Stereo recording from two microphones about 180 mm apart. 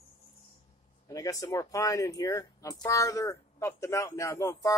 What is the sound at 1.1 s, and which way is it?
Speech, 20° left (ahead or behind).